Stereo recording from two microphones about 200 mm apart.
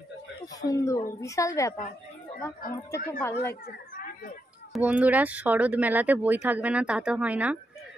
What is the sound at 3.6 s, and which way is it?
Children playing, 45° left (ahead or behind).